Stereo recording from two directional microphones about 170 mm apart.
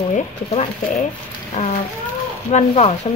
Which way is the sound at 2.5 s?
40° left (ahead or behind).